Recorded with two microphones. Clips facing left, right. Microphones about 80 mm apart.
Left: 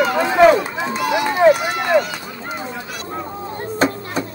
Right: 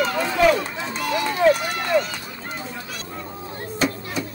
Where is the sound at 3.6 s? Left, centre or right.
Left.